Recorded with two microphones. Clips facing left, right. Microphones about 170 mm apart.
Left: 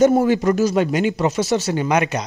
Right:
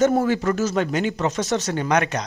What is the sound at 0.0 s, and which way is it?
Speech, 15° left (ahead or behind).